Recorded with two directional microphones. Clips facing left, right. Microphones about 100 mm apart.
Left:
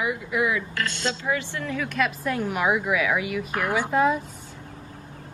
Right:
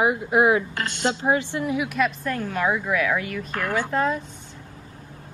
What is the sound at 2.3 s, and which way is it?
A woman's voice, 15° left (ahead or behind).